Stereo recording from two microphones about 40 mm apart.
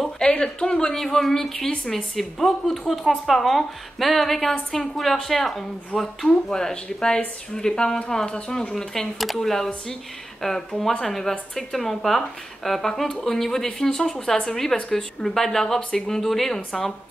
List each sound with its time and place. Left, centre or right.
0.2 s speech: centre
0.9 s a woman's voice: centre